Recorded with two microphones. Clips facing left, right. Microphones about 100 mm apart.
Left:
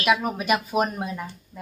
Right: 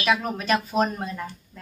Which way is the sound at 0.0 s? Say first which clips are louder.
Left 2 dB; 10° left (ahead or behind).